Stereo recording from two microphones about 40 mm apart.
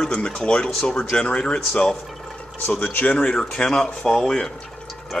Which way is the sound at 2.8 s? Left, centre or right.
Left.